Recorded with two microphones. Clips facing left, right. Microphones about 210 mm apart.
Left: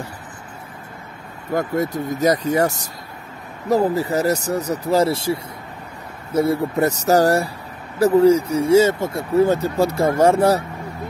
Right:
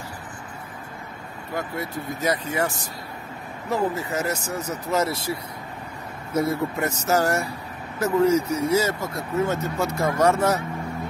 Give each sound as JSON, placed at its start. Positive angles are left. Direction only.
{"t": 1.5, "sound": "speech", "side_deg": 45}